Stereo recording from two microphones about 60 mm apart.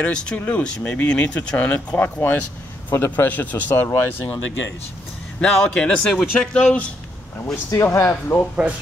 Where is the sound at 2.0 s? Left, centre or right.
Left.